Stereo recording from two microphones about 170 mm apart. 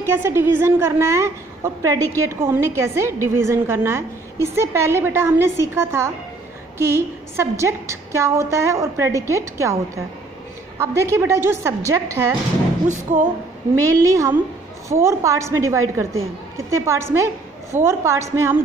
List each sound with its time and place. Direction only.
0.0 s a woman's voice: 15° right (ahead or behind)
7.3 s a woman's voice: 15° right (ahead or behind)
10.8 s a woman's voice: 15° right (ahead or behind)
12.8 s speech: 45° right (ahead or behind)
13.8 s a woman's voice: 20° right (ahead or behind)